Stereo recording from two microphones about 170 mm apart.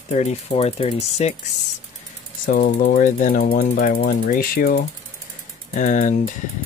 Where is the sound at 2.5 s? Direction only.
55° left (ahead or behind).